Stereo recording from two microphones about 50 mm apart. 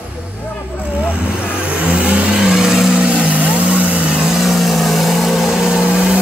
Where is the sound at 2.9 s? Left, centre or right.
Centre.